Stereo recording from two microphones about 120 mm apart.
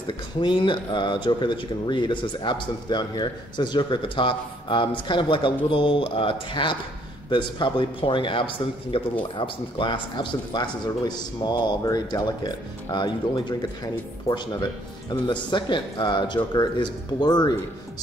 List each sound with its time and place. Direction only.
0.4 s a man's voice: 40° left (ahead or behind)